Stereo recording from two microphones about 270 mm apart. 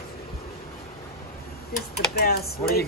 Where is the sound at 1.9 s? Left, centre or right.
Left.